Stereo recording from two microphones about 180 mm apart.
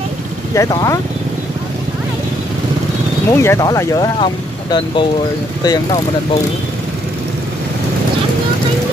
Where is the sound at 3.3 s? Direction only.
15° left (ahead or behind).